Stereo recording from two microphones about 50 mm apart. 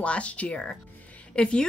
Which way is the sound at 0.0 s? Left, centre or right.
Left.